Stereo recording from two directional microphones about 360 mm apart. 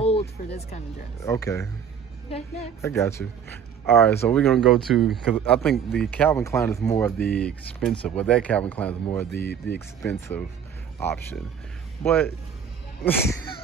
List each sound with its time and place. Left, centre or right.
0.0 s a sound: centre
0.5 s a woman's voice: centre
12.0 s a woman's voice: centre